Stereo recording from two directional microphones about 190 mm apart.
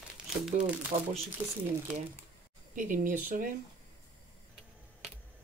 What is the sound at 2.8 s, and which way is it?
Speech, 45° right (ahead or behind).